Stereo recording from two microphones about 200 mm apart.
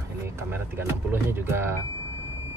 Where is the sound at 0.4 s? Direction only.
10° right (ahead or behind).